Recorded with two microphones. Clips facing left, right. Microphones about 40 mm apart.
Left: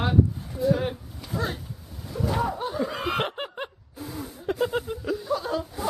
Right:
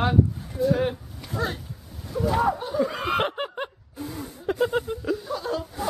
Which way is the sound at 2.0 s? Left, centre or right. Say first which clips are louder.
Right 3 dB; centre.